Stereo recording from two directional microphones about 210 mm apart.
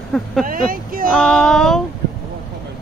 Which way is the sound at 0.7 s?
40° right (ahead or behind).